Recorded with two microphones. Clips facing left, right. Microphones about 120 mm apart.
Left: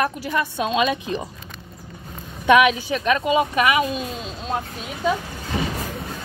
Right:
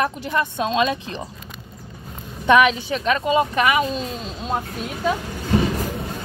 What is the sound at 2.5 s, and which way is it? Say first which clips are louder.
Speech: even; 10° left (ahead or behind).